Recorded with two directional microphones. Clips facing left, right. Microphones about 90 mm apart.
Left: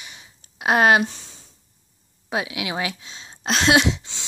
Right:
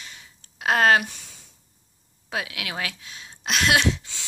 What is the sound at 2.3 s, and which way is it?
Speech, 20° left (ahead or behind).